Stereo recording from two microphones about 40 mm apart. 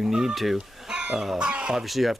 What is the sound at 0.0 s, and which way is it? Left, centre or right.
Speech, centre.